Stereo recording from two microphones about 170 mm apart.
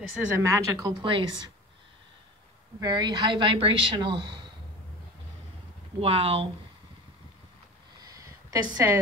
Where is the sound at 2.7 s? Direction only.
25° right (ahead or behind).